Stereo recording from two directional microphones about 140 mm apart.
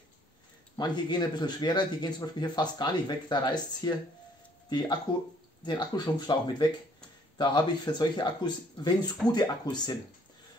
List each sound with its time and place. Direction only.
0.7 s speech: 30° left (ahead or behind)